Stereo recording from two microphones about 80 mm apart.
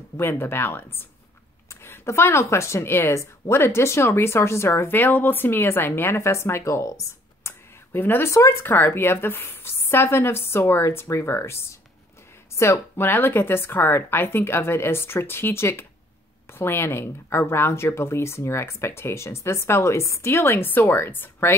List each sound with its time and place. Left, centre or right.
0.2 s speech: left
7.9 s speech: left
8.3 s speech: left